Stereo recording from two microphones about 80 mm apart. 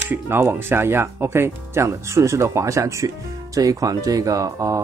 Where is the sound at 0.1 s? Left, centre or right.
Right.